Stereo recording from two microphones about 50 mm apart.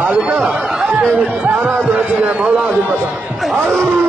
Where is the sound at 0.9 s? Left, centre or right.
Right.